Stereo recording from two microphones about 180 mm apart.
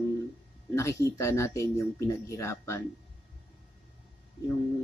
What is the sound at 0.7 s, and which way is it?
Speech, 15° left (ahead or behind).